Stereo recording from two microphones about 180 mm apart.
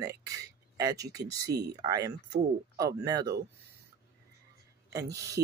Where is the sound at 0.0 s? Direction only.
20° right (ahead or behind).